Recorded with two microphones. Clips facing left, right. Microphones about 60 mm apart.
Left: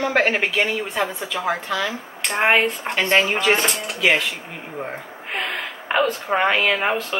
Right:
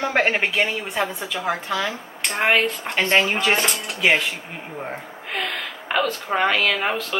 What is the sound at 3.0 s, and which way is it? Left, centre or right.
A woman's voice, centre.